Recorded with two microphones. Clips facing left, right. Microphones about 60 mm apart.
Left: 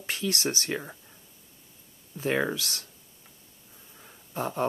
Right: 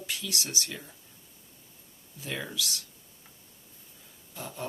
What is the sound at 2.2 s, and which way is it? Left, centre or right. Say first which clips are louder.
Speech: left 8 dB; left.